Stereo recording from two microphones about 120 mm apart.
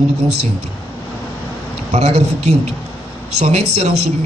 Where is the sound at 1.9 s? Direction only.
60° right (ahead or behind).